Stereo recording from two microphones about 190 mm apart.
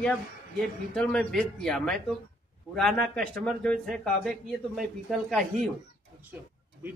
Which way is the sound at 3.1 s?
5° left (ahead or behind).